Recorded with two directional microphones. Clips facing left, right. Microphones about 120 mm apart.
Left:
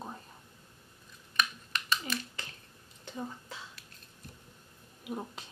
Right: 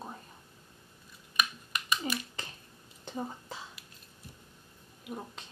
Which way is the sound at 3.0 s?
35° right (ahead or behind).